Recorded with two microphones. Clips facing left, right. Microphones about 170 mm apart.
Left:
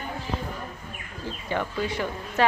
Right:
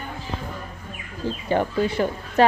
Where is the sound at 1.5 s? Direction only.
35° right (ahead or behind).